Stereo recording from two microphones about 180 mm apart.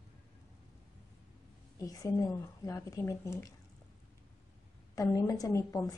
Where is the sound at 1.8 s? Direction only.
20° left (ahead or behind).